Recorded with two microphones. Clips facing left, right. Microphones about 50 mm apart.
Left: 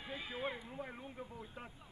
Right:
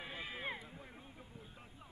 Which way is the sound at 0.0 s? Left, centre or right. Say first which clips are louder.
Left 2 dB; right.